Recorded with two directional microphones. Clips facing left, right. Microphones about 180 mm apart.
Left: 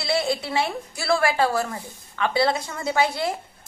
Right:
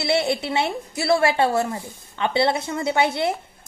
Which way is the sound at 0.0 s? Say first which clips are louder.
Right 3 dB; 25° right (ahead or behind).